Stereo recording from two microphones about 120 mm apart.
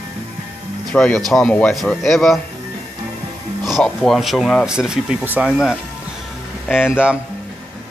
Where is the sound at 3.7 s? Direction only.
Centre (ahead or behind).